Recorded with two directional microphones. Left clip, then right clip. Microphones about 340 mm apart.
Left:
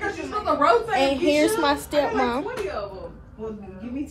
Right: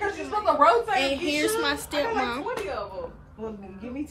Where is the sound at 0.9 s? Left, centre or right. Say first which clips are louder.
Left 5 dB; centre.